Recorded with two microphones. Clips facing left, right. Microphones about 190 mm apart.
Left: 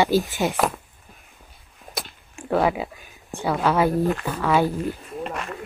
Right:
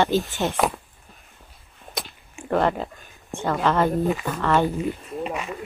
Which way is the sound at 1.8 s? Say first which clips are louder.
Even; centre (ahead or behind).